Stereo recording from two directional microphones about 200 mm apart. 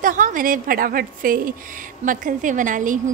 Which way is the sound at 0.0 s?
40° right (ahead or behind).